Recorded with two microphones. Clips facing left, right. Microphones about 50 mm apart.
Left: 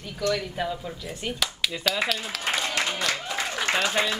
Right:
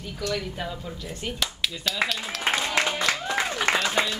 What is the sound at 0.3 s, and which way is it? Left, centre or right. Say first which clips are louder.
Speech: left 4 dB; centre.